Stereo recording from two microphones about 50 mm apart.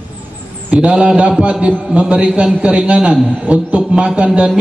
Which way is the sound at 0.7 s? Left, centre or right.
Right.